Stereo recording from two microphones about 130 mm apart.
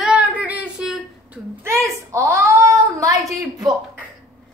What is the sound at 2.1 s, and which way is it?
Speech, 20° right (ahead or behind).